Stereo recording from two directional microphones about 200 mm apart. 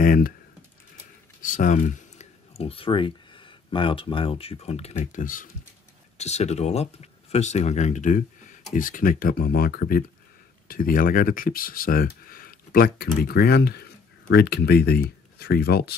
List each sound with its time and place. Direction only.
0.0 s speech: 45° left (ahead or behind)
1.4 s speech: 40° left (ahead or behind)